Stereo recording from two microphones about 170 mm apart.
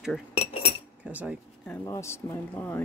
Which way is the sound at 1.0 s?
10° right (ahead or behind).